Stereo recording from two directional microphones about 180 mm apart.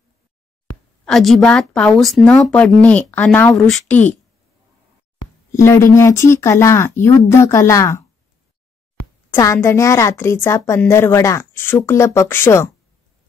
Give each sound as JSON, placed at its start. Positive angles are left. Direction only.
{"t": 1.0, "sound": "a woman's voice", "side_deg": 0}
{"t": 5.5, "sound": "a woman's voice", "side_deg": 15}
{"t": 9.3, "sound": "a woman's voice", "side_deg": 15}